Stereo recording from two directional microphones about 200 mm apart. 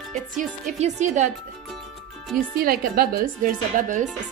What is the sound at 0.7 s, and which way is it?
Speech, 35° right (ahead or behind).